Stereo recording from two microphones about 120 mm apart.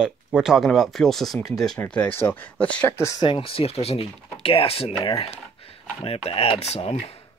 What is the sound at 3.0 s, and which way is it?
Speech, 25° left (ahead or behind).